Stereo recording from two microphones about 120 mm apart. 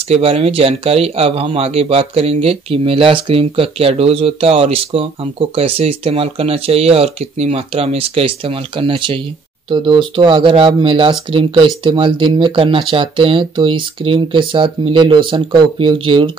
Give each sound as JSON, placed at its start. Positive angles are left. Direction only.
{"t": 0.1, "sound": "speech", "side_deg": -55}